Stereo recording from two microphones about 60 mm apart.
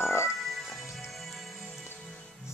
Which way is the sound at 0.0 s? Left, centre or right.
Left.